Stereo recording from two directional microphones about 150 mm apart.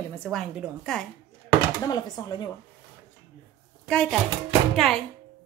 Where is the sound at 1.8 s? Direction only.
25° left (ahead or behind).